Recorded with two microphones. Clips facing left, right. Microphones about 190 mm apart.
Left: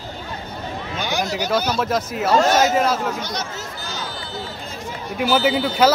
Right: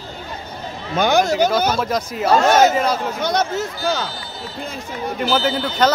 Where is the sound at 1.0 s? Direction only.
50° right (ahead or behind).